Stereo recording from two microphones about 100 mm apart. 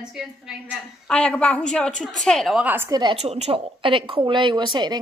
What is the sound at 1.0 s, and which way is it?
A woman's voice, 10° left (ahead or behind).